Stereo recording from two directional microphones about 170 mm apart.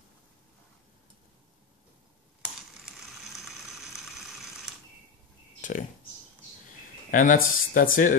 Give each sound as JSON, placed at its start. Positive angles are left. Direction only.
{"t": 3.4, "sound": "vehicle", "side_deg": 0}
{"t": 5.6, "sound": "a sound", "side_deg": 50}
{"t": 7.1, "sound": "speech", "side_deg": 55}